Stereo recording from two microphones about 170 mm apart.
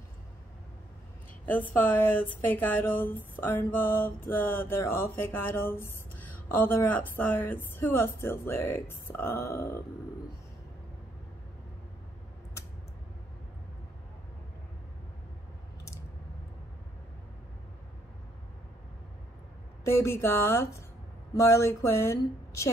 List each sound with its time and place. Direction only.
1.4 s speech: 10° left (ahead or behind)
19.8 s speech: 15° left (ahead or behind)